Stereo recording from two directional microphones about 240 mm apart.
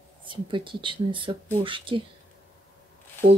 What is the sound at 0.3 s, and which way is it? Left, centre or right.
Speech, centre.